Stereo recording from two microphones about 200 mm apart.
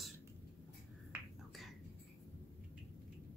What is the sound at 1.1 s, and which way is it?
Finger snapping, 10° right (ahead or behind).